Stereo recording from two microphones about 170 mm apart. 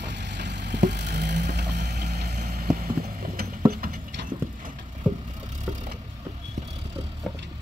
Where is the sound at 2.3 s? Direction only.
60° right (ahead or behind).